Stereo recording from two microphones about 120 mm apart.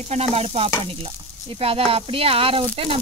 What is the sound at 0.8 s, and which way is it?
Speech, 50° right (ahead or behind).